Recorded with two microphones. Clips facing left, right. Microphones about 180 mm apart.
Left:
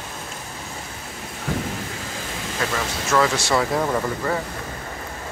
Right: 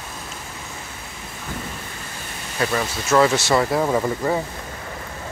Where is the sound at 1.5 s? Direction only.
90° left.